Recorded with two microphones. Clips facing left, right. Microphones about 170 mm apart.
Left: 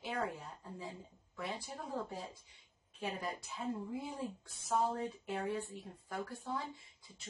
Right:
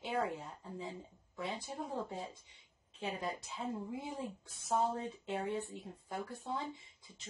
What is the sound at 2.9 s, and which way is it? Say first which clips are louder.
Speech: right 1 dB; 25° right (ahead or behind).